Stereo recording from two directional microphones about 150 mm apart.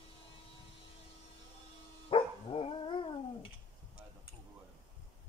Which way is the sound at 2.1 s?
35° left (ahead or behind).